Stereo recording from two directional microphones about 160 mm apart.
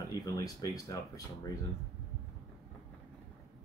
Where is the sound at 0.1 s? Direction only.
25° left (ahead or behind).